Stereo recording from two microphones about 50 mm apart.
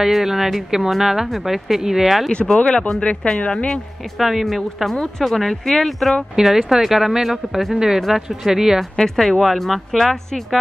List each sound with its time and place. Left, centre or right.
0.0 s a woman's voice: centre
2.3 s speech: centre
4.2 s a woman's voice: centre
6.3 s speech: centre
8.9 s a woman's voice: centre